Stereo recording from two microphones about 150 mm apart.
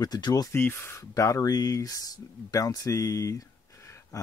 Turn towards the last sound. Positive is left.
turn(degrees=20)  # may be behind; listen again after turning